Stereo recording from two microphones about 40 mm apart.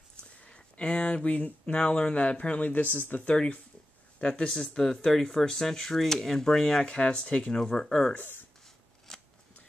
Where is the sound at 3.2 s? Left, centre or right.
Left.